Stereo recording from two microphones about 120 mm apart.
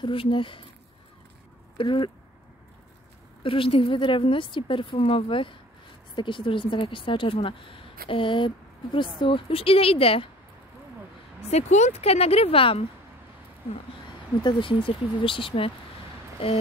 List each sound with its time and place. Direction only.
0.0 s speech: 45° left (ahead or behind)
1.8 s speech: 50° left (ahead or behind)
3.4 s speech: 50° left (ahead or behind)
11.4 s a woman's voice: 70° left (ahead or behind); by 12.8 s 50° left (ahead or behind)
14.4 s speech: 40° left (ahead or behind)